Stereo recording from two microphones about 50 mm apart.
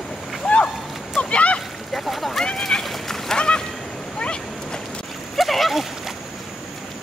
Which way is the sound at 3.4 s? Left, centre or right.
Centre.